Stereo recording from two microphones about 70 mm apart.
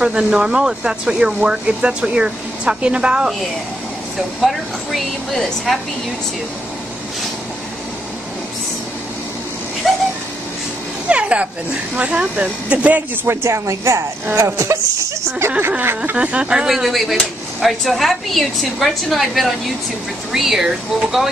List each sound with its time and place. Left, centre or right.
0.0 s speech: centre
4.4 s speech: centre
9.8 s a sound: centre
11.1 s a sound: centre
12.0 s speech: centre
13.3 s speech: right
16.2 s speech: centre